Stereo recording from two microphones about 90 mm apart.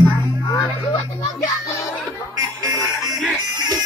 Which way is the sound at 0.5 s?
45° left (ahead or behind).